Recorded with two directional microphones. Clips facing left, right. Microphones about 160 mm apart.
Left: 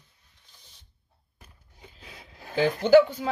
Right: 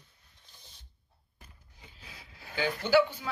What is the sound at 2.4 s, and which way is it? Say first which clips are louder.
Speech: left 8 dB; 40° left (ahead or behind).